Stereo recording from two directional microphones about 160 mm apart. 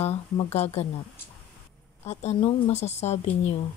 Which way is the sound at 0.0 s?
40° left (ahead or behind).